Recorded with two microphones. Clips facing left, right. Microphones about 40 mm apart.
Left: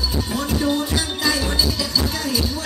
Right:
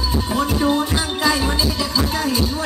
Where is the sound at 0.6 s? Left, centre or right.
Right.